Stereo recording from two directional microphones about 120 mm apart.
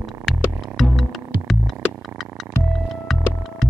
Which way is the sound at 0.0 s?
Centre (ahead or behind).